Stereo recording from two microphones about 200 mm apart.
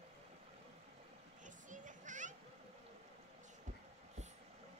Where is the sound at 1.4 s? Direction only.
40° right (ahead or behind).